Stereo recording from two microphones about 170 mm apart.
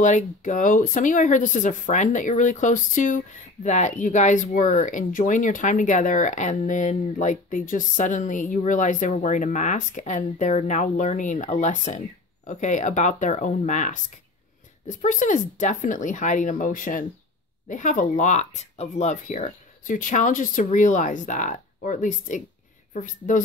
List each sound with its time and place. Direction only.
0.0 s speech: 45° left (ahead or behind)